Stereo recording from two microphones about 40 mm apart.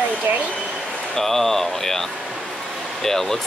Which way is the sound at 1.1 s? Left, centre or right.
Centre.